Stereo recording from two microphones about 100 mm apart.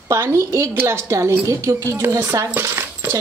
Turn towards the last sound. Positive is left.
turn(degrees=-25)  # may be behind; listen again after turning